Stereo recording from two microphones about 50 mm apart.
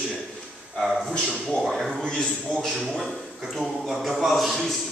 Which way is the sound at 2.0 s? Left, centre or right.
Centre.